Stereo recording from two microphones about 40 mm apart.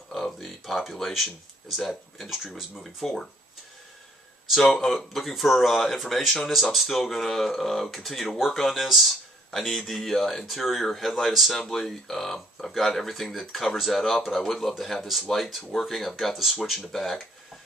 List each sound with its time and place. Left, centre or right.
0.1 s speech: centre
2.2 s speech: centre
2.7 s speech: centre
4.7 s speech: centre
6.5 s speech: centre
16.3 s speech: centre